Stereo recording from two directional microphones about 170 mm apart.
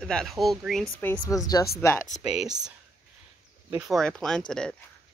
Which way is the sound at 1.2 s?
20° left (ahead or behind).